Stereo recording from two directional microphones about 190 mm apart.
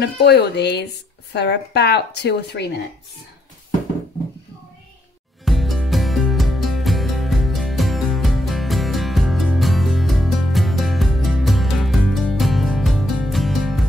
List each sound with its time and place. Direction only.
0.0 s a woman's voice: 60° left (ahead or behind)
5.4 s music: centre (ahead or behind)